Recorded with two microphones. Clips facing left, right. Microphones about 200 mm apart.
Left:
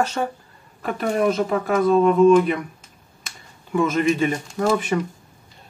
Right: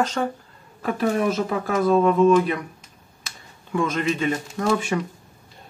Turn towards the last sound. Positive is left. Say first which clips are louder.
# left 1 dB
turn(degrees=0)  # may be behind; listen again after turning